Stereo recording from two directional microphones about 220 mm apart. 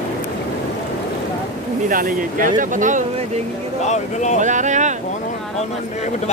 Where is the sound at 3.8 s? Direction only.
30° left (ahead or behind).